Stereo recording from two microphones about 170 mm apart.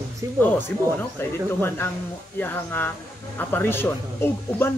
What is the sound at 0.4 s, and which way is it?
Speech, 10° left (ahead or behind).